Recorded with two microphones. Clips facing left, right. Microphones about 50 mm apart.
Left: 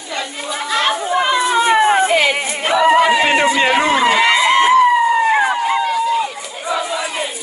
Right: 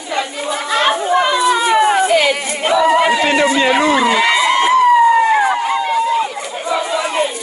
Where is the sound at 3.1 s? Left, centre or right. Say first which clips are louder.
Even; left.